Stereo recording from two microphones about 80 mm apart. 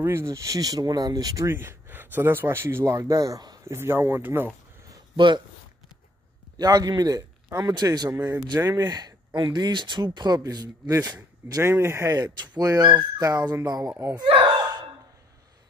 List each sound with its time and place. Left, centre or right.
0.0 s speech: right
0.3 s speech: right
1.5 s speech: right
3.6 s speech: right
5.1 s speech: right
6.5 s speech: right
8.5 s speech: right
10.9 s speech: right
12.4 s speech: right
14.3 s a sound: right